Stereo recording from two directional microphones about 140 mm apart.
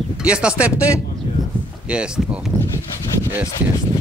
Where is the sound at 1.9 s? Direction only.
5° right (ahead or behind).